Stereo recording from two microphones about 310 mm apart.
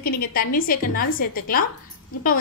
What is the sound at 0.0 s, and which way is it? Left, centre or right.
A woman's voice, left.